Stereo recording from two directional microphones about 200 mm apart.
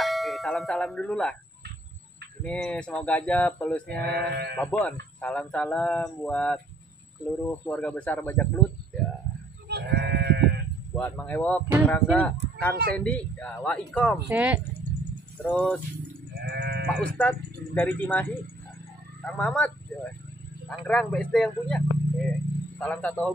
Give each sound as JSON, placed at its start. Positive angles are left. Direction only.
{"t": 0.0, "sound": "speech", "side_deg": 0}
{"t": 2.4, "sound": "speech", "side_deg": 5}
{"t": 4.0, "sound": "sheep", "side_deg": -55}
{"t": 4.6, "sound": "speech", "side_deg": 5}
{"t": 9.7, "sound": "sheep", "side_deg": -55}
{"t": 11.0, "sound": "speech", "side_deg": 10}
{"t": 14.3, "sound": "speech", "side_deg": -5}
{"t": 15.4, "sound": "speech", "side_deg": 5}
{"t": 16.3, "sound": "sheep", "side_deg": -55}
{"t": 16.8, "sound": "speech", "side_deg": 5}
{"t": 19.2, "sound": "a man's voice", "side_deg": 5}